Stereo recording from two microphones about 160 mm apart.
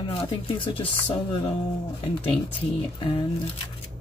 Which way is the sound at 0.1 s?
35° left (ahead or behind).